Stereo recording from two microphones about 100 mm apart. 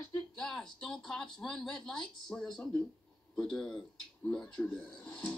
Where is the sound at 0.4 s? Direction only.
5° left (ahead or behind).